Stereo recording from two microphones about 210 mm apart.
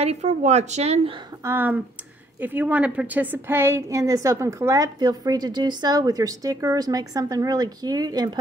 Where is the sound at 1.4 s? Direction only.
10° right (ahead or behind).